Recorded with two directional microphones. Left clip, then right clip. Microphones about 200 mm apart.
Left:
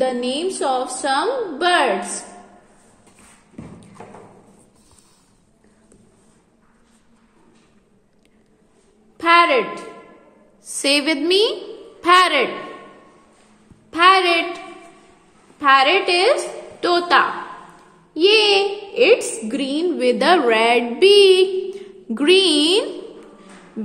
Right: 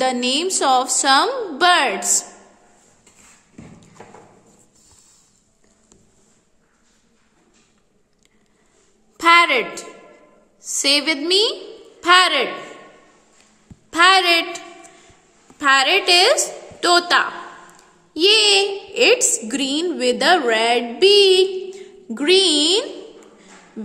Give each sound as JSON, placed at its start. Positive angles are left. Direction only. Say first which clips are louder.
{"t": 0.0, "sound": "a woman's voice", "louder": "right 1 dB", "side_deg": -30}
{"t": 9.1, "sound": "a woman's voice", "louder": "even", "side_deg": -25}
{"t": 10.7, "sound": "a child's voice", "louder": "even", "side_deg": -10}
{"t": 13.8, "sound": "a woman's voice", "louder": "even", "side_deg": -20}
{"t": 15.6, "sound": "a woman's voice", "louder": "left 1 dB", "side_deg": -20}